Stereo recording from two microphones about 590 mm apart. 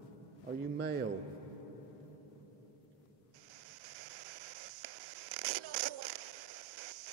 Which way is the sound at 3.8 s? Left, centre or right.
Right.